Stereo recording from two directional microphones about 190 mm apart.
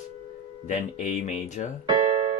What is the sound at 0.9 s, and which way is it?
Speech, 40° left (ahead or behind).